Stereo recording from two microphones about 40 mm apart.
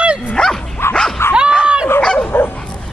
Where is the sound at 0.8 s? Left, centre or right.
Left.